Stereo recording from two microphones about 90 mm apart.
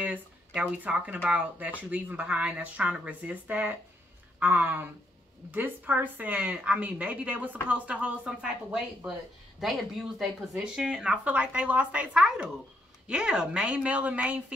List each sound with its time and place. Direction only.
0.6 s speech: 15° right (ahead or behind)